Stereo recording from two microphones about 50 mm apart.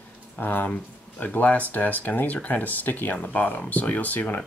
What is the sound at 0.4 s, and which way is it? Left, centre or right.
Speech, left.